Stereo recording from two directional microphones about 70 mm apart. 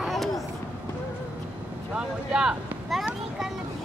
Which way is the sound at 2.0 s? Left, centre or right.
Centre.